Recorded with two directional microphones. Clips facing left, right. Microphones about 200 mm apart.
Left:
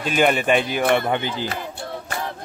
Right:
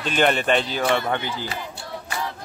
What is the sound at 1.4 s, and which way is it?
Music, 55° left (ahead or behind).